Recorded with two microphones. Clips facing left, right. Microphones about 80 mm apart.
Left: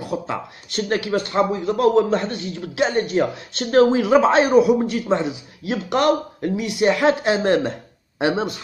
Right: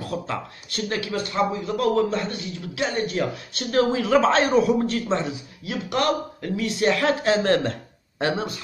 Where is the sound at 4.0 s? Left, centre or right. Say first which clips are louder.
Left 4 dB; centre.